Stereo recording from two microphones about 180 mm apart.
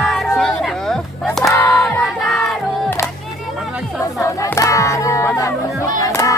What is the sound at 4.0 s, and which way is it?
Chatter, 15° left (ahead or behind).